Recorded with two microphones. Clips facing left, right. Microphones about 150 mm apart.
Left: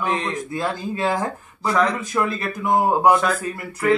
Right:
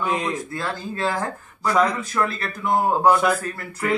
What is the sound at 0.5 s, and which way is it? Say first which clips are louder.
Speech: left 4 dB; 15° left (ahead or behind).